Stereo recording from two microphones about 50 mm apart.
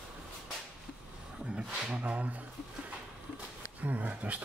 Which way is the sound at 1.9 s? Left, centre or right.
Right.